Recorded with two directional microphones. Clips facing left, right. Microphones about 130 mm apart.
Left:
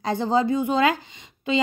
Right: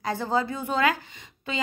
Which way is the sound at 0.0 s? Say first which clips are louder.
Left 5 dB; 20° left (ahead or behind).